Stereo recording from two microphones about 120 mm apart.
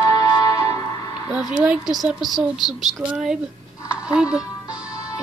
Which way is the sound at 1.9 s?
Centre (ahead or behind).